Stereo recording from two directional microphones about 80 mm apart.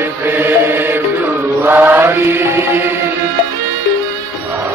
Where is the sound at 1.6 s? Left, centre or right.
Right.